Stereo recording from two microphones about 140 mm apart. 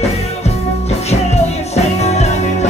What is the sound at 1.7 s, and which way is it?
Music, 50° left (ahead or behind).